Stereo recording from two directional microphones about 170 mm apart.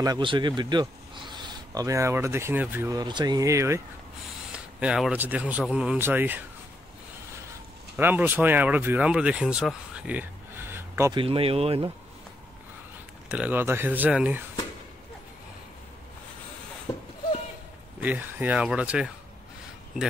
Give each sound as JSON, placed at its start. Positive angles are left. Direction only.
{"t": 0.0, "sound": "speech", "side_deg": -25}
{"t": 4.5, "sound": "speech", "side_deg": -5}
{"t": 7.9, "sound": "speech", "side_deg": -10}
{"t": 11.1, "sound": "speech", "side_deg": -35}
{"t": 13.3, "sound": "speech", "side_deg": -10}
{"t": 16.9, "sound": "a sound", "side_deg": 10}
{"t": 18.0, "sound": "speech", "side_deg": -10}